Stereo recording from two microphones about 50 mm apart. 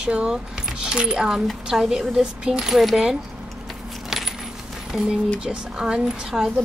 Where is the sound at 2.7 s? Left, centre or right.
Centre.